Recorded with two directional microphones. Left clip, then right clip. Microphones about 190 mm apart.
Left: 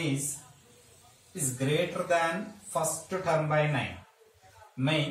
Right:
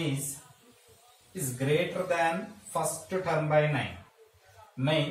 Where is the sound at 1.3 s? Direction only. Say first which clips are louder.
Right 1 dB; centre (ahead or behind).